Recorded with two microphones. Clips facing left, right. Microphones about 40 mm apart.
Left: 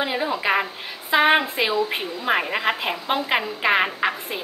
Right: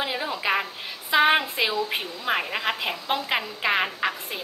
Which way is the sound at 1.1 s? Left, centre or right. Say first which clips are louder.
Left 2 dB; centre.